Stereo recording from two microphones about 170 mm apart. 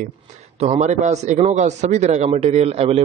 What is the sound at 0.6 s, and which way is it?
A man's voice, 40° right (ahead or behind).